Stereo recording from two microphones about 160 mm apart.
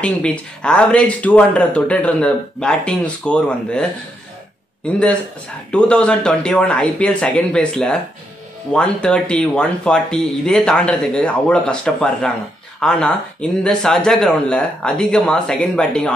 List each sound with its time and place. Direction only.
0.0 s speech: 5° left (ahead or behind)
4.8 s speech: 5° left (ahead or behind)